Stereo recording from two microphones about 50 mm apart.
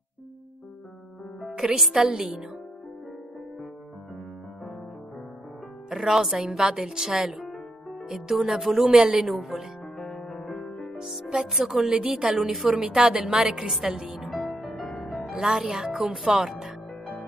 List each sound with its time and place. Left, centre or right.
1.5 s a woman's voice: centre
5.9 s speech: centre
8.1 s music: centre
8.9 s speech: centre
9.9 s music: centre
11.0 s music: centre
11.2 s a woman's voice: centre
13.2 s speech: centre
14.1 s music: centre
15.2 s speech: centre